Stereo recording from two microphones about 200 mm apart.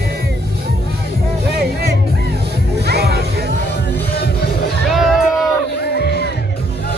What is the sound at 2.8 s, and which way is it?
Music, 55° right (ahead or behind).